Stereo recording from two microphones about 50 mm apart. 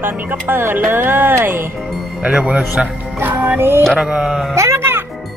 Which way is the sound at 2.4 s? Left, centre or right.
Right.